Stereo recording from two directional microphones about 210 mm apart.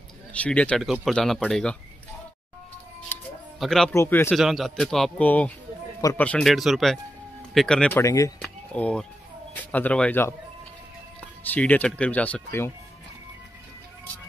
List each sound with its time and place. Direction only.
0.3 s speech: 5° left (ahead or behind)
3.1 s music: 10° left (ahead or behind)
3.5 s speech: centre (ahead or behind)
3.9 s speech: 10° left (ahead or behind)
4.3 s a man's voice: centre (ahead or behind); by 6.2 s 15° left (ahead or behind)
6.2 s speech: 5° left (ahead or behind)
8.0 s speech: 15° left (ahead or behind)
8.4 s a sound: 5° left (ahead or behind)
9.6 s speech: 5° left (ahead or behind)
11.5 s speech: 5° left (ahead or behind)